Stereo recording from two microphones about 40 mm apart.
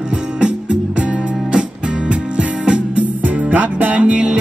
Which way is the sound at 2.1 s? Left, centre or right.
Right.